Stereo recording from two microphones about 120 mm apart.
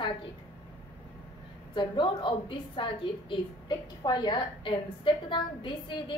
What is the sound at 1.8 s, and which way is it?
A woman's voice, 40° left (ahead or behind).